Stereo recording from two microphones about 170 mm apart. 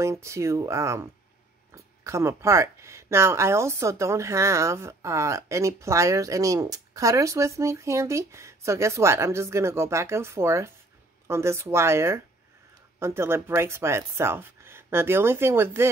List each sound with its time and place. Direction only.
0.0 s speech: 15° right (ahead or behind)